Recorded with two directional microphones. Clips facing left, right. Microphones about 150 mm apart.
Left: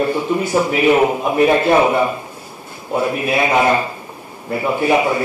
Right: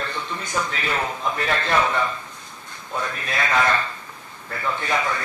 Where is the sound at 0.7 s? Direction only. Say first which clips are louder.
Left 13 dB; 15° left (ahead or behind).